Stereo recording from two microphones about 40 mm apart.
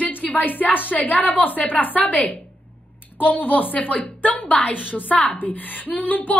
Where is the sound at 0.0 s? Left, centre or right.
Left.